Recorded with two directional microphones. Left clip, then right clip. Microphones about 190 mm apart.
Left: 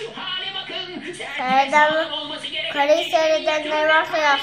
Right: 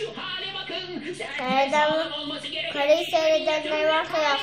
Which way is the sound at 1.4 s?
10° right (ahead or behind).